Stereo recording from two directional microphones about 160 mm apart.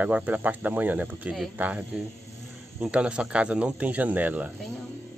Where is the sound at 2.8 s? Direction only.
5° right (ahead or behind).